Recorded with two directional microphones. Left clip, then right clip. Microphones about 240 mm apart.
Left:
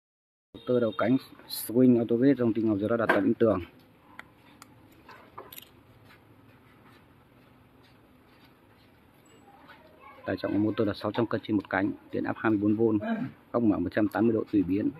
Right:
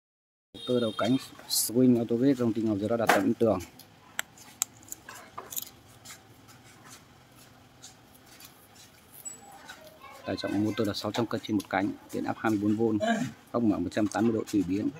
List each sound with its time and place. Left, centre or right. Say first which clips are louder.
0.7 s speech: left 2 dB; centre
10.2 s speech: left 2 dB; centre